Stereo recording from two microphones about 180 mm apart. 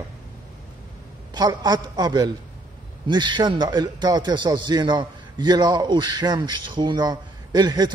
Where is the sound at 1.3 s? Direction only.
20° right (ahead or behind).